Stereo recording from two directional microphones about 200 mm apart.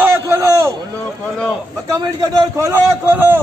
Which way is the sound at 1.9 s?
20° right (ahead or behind).